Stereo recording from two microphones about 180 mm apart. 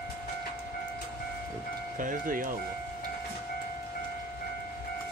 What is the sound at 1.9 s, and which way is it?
Speech, 50° right (ahead or behind).